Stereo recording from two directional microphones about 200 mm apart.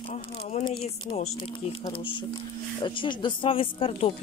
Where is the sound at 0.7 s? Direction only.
25° left (ahead or behind).